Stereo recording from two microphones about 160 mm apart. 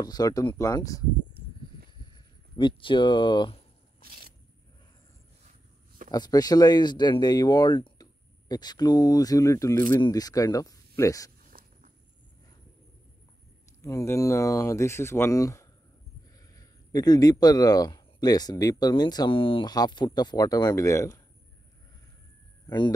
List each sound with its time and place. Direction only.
0.0 s a man's voice: 25° left (ahead or behind)
2.0 s speech: 25° left (ahead or behind)
4.0 s a sound: 65° right (ahead or behind)
6.1 s a man's voice: 25° left (ahead or behind)
11.5 s walk: 60° right (ahead or behind)
13.8 s a man's voice: 20° left (ahead or behind)
22.7 s a man's voice: 25° left (ahead or behind)